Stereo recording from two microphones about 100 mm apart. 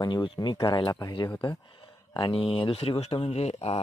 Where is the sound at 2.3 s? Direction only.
60° left (ahead or behind); by 3.8 s 85° left.